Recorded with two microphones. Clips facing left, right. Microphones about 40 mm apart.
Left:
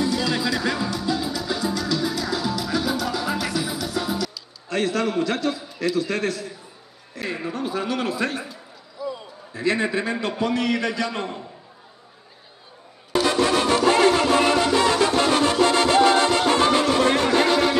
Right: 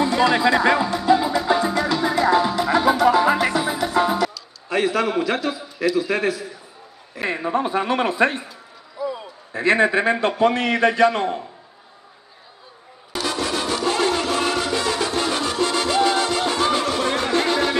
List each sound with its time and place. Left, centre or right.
0.0 s music: right
4.6 s a man's voice: centre
7.2 s speech: right
8.9 s basketball bounce: centre
9.5 s speech: right
13.1 s music: centre
14.3 s salsa music: centre
17.0 s music: centre